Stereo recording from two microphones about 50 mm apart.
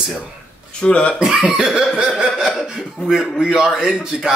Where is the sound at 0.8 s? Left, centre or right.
Left.